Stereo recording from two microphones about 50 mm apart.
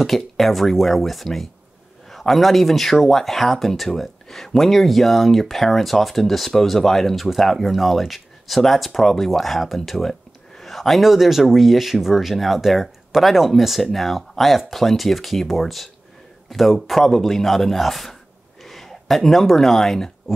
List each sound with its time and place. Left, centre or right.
0.0 s speech: centre